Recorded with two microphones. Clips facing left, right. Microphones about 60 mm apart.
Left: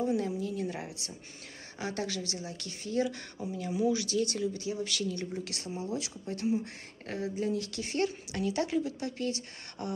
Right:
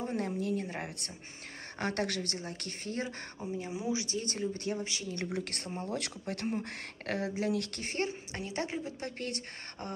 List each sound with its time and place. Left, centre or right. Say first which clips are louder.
0.0 s speech: left 3 dB; right
3.5 s speech: left 5 dB; right
5.1 s speech: right 1 dB; right
7.8 s a woman's voice: left 3 dB; right